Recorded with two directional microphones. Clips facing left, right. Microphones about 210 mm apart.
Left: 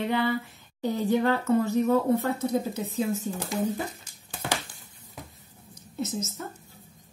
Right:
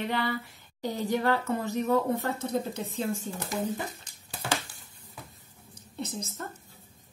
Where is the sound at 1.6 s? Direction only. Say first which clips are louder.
Left 3 dB; 15° right (ahead or behind).